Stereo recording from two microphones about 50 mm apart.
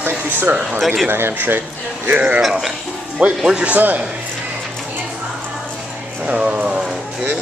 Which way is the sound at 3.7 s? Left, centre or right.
Right.